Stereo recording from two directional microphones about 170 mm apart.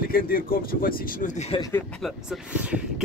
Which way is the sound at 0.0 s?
60° left (ahead or behind).